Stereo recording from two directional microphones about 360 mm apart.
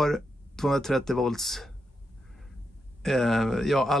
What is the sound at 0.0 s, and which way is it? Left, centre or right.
Speech, centre.